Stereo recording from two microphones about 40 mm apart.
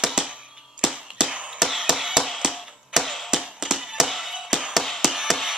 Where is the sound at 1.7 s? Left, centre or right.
Centre.